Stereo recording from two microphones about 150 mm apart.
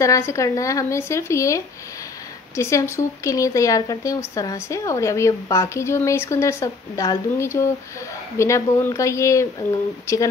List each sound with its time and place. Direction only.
0.0 s speech: 20° left (ahead or behind)